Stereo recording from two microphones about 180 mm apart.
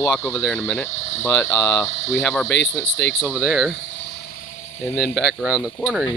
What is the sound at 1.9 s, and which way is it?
Speech, 40° left (ahead or behind).